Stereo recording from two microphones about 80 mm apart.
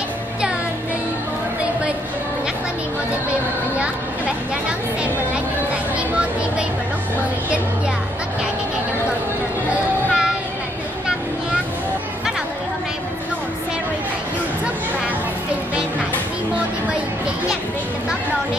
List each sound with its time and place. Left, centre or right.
3.3 s music: centre
9.7 s music: centre